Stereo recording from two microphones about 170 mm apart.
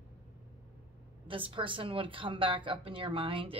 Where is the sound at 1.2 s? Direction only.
30° right (ahead or behind).